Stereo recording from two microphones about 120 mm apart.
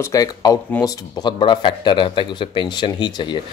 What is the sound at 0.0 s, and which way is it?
Speech, 30° left (ahead or behind).